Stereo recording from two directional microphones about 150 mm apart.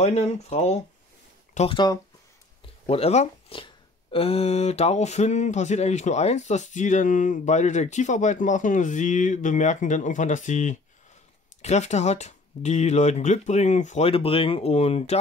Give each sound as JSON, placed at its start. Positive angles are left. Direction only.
{"t": 0.0, "sound": "speech", "side_deg": 50}
{"t": 1.7, "sound": "speech", "side_deg": 30}
{"t": 2.9, "sound": "speech", "side_deg": 45}
{"t": 14.0, "sound": "speech", "side_deg": 40}